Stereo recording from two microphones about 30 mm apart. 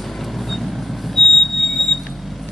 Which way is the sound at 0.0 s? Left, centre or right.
Centre.